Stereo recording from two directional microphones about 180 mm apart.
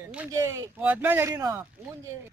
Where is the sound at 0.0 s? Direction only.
10° right (ahead or behind).